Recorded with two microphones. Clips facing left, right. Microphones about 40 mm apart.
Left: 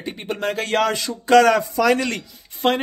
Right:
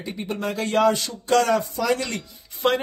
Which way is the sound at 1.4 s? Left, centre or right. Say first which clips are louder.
Left 5 dB; left.